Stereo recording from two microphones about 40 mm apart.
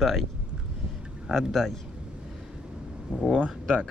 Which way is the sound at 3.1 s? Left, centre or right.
Right.